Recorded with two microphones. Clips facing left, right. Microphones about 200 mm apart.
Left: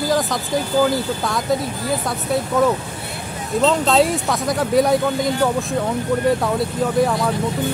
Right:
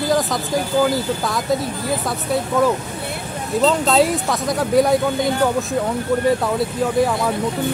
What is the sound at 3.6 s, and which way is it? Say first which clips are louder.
Speech: even; centre (ahead or behind).